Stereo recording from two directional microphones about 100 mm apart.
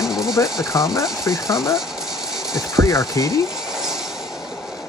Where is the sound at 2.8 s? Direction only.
35° left (ahead or behind).